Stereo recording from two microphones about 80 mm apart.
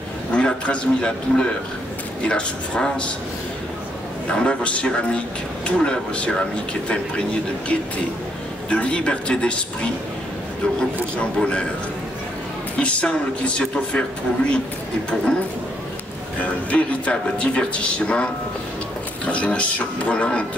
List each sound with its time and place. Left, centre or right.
0.3 s a man's voice: centre
4.3 s speech: centre
11.1 s speech: centre
12.7 s speech: centre
16.3 s speech: centre